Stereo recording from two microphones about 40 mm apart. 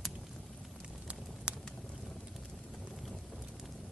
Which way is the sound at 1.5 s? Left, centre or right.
Right.